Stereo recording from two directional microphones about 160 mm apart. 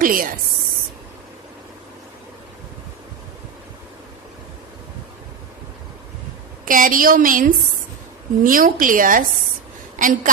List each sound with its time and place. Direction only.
0.0 s a woman's voice: 60° right (ahead or behind)
6.6 s a woman's voice: 55° right (ahead or behind)